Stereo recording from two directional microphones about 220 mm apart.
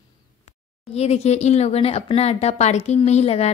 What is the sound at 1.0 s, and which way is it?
A woman's voice, 30° left (ahead or behind).